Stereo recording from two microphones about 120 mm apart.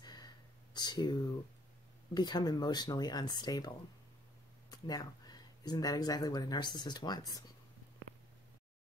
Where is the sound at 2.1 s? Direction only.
35° left (ahead or behind).